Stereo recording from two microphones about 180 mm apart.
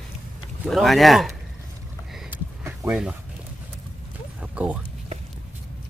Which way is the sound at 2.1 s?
5° right (ahead or behind).